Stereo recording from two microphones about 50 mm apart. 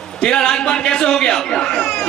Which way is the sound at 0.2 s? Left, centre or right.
Centre.